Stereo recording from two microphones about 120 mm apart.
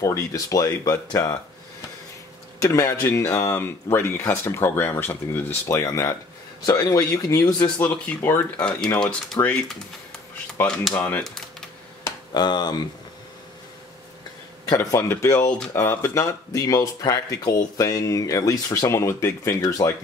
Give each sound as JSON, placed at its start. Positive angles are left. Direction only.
{"t": 0.0, "sound": "speech", "side_deg": 25}
{"t": 2.6, "sound": "speech", "side_deg": 25}
{"t": 7.6, "sound": "speech", "side_deg": 10}
{"t": 10.6, "sound": "speech", "side_deg": 20}
{"t": 12.0, "sound": "a sound", "side_deg": 35}
{"t": 14.7, "sound": "speech", "side_deg": 25}